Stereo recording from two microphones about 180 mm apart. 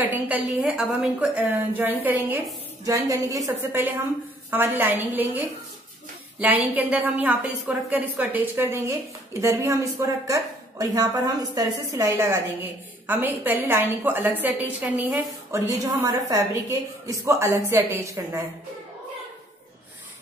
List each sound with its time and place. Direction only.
0.0 s a woman's voice: 10° right (ahead or behind)
6.4 s a woman's voice: 10° right (ahead or behind)